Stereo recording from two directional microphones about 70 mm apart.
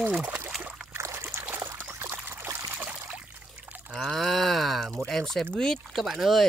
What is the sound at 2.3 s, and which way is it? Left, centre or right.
Trickle, right.